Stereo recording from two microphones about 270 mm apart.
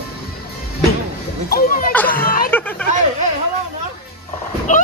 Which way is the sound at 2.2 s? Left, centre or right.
Left.